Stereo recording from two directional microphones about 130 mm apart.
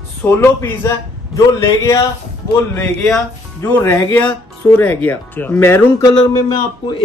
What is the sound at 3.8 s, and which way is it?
Speech, 15° left (ahead or behind).